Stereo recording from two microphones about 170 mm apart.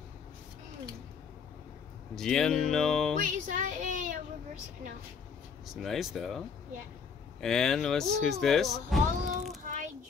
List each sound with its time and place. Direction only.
2.1 s speech: 5° left (ahead or behind)
3.2 s speech: 50° right (ahead or behind)
5.7 s speech: centre (ahead or behind)